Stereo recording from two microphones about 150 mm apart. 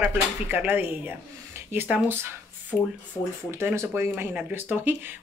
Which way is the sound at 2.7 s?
15° left (ahead or behind).